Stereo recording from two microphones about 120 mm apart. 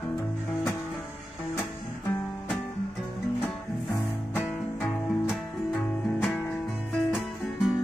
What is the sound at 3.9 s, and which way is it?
Music, 20° left (ahead or behind).